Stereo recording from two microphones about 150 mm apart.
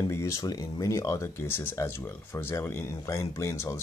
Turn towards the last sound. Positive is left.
turn(degrees=20)  # may be behind; listen again after turning